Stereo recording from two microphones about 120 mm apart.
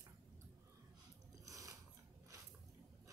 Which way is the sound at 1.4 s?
30° right (ahead or behind).